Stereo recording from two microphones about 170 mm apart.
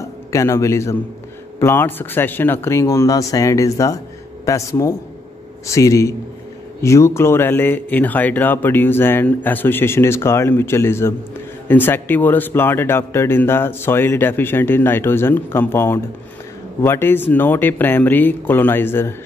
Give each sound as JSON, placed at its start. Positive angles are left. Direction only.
{"t": 0.3, "sound": "speech", "side_deg": 15}